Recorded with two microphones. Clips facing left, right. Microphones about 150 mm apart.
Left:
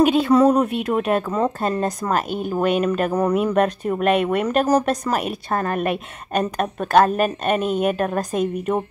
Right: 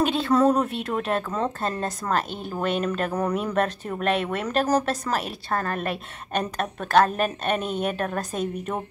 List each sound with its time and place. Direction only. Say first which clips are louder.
0.0 s speech: left 5 dB; 10° left (ahead or behind)